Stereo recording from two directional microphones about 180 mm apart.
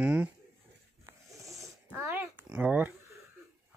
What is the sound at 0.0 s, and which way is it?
Speech, 10° right (ahead or behind).